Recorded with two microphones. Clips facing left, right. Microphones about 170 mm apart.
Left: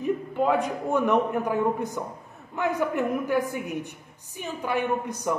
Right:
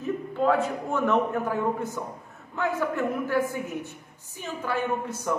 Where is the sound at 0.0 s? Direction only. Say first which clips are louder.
Left 1 dB; 15° left (ahead or behind).